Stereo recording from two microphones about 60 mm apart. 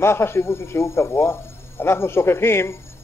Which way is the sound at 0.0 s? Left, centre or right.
Left.